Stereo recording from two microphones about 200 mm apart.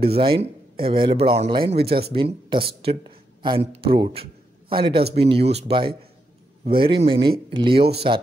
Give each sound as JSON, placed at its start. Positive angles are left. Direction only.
{"t": 0.0, "sound": "speech", "side_deg": -30}
{"t": 1.8, "sound": "speech", "side_deg": -55}
{"t": 2.0, "sound": "speech", "side_deg": -25}